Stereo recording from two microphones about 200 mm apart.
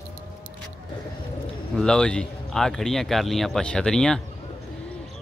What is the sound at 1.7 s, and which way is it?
Speech, 5° left (ahead or behind).